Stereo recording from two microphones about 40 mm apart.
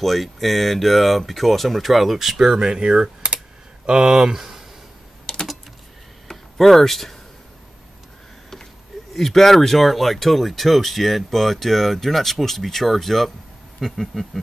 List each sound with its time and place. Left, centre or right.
0.0 s speech: centre
5.2 s typing: left
6.2 s a sound: centre
9.1 s speech: centre